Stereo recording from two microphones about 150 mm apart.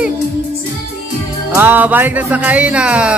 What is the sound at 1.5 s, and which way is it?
Music, 10° right (ahead or behind).